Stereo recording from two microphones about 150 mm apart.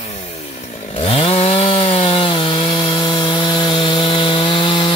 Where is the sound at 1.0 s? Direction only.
40° left (ahead or behind).